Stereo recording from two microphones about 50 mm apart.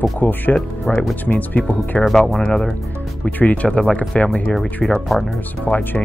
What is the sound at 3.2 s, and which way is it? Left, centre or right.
Speech, left.